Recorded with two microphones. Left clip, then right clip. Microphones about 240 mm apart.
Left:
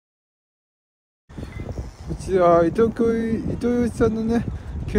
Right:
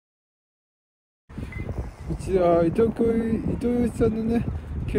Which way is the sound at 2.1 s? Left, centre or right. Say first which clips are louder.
Left 4 dB; centre.